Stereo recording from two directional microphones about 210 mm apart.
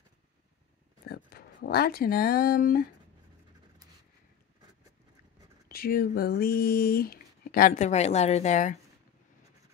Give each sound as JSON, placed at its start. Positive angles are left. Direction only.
{"t": 1.0, "sound": "speech", "side_deg": 50}
{"t": 5.7, "sound": "speech", "side_deg": 45}